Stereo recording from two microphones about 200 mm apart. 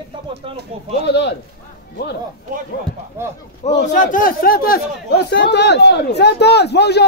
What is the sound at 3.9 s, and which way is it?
Speech, 40° left (ahead or behind).